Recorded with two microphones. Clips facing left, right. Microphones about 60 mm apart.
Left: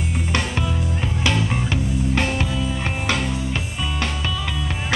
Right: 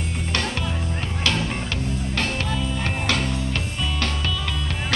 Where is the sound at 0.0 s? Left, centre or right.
Centre.